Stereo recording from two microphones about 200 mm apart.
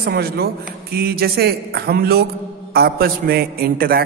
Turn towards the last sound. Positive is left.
turn(degrees=-50)  # may be behind; listen again after turning